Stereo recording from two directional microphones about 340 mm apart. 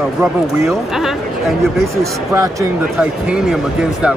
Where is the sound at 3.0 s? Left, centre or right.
Centre.